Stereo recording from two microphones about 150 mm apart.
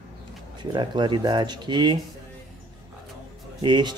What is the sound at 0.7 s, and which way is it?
A man's voice, 30° right (ahead or behind).